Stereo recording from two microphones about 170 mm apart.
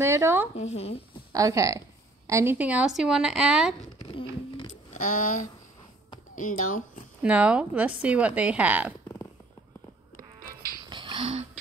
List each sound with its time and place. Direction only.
0.0 s a woman's voice: 15° right (ahead or behind)
0.6 s speech: 40° left (ahead or behind)
1.3 s speech: 20° right (ahead or behind)
4.0 s a sound: 30° left (ahead or behind)
4.9 s speech: 50° left (ahead or behind)
7.2 s a woman's voice: 10° right (ahead or behind)
10.8 s music: 25° right (ahead or behind)